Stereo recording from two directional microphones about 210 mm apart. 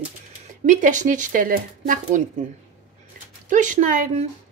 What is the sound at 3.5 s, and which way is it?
Speech, 35° right (ahead or behind).